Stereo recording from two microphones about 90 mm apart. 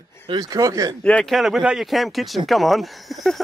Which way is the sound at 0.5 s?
35° right (ahead or behind).